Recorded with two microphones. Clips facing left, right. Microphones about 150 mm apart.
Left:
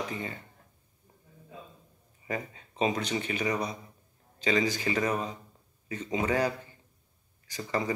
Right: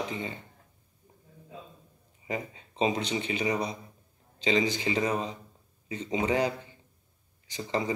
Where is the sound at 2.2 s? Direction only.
25° right (ahead or behind).